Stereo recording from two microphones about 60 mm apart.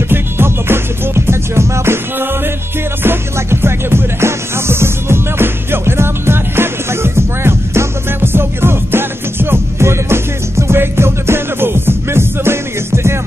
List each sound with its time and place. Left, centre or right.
0.1 s music: right